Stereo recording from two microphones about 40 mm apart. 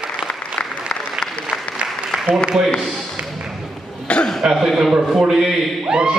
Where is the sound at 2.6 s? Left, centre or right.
Centre.